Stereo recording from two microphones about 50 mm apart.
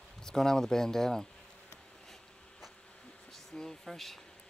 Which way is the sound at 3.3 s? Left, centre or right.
Centre.